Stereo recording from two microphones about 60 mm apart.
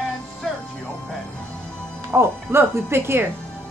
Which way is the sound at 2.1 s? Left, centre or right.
Right.